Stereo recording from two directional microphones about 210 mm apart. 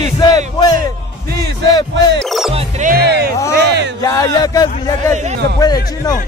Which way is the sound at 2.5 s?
25° right (ahead or behind).